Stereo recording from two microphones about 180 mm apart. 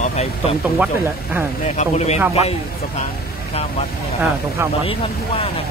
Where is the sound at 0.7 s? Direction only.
10° right (ahead or behind).